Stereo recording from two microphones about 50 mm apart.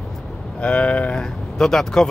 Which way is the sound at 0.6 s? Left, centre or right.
Left.